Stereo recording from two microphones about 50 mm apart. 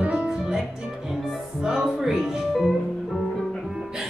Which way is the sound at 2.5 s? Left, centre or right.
Centre.